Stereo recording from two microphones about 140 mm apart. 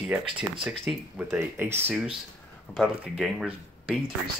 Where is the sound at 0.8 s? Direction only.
15° right (ahead or behind).